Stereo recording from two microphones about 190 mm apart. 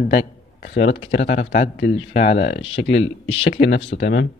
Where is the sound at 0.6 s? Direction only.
65° left (ahead or behind).